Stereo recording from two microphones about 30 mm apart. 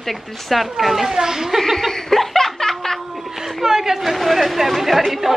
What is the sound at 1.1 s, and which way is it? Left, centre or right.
Speech, centre.